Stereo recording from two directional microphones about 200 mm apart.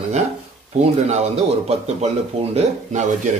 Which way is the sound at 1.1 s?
35° right (ahead or behind).